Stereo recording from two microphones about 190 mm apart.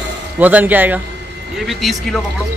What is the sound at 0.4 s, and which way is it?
Speech, 10° right (ahead or behind).